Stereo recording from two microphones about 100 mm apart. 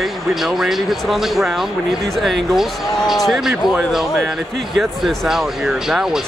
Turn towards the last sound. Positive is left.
turn(degrees=-5)  # may be behind; listen again after turning